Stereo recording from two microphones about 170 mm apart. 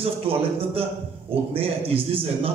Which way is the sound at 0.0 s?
35° right (ahead or behind).